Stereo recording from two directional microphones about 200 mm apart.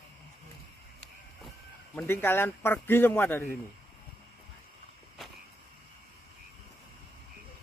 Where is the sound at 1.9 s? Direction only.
10° left (ahead or behind).